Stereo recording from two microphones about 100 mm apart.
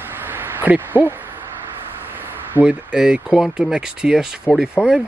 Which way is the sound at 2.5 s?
10° right (ahead or behind).